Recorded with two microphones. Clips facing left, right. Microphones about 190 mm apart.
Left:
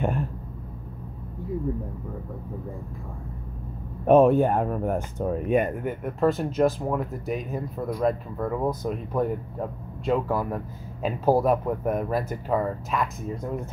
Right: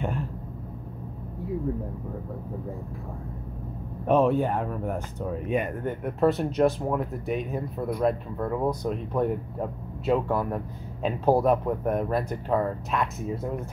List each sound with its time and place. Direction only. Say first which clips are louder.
4.1 s speech: left 5 dB; 50° left (ahead or behind)
5.8 s speech: even; 5° left (ahead or behind)